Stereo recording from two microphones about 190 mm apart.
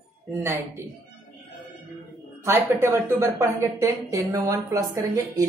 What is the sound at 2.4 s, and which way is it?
A woman's voice, 15° right (ahead or behind).